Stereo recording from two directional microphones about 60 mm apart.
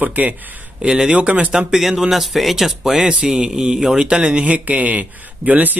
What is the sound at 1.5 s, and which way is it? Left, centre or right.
Speech, centre.